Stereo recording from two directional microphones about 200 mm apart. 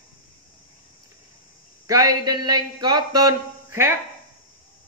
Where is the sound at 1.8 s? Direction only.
20° right (ahead or behind).